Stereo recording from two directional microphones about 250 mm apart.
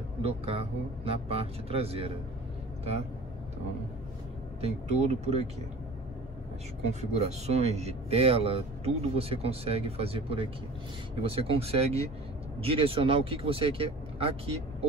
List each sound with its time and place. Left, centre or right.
0.2 s speech: right
4.6 s speech: right
6.9 s speech: right